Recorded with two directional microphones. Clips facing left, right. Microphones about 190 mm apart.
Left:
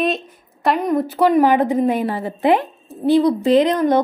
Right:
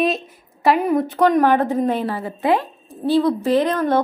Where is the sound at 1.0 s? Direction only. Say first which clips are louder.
Left 4 dB; 5° left (ahead or behind).